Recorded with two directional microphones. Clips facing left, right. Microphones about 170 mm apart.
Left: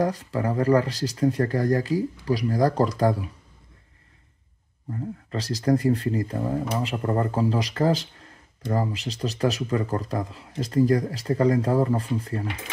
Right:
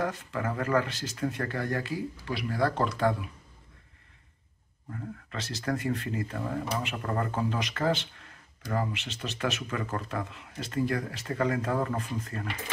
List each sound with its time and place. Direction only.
0.0 s speech: 35° left (ahead or behind)
4.9 s speech: 35° left (ahead or behind)